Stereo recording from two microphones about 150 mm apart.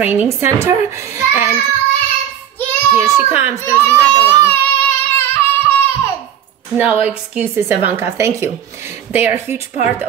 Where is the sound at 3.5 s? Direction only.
15° left (ahead or behind).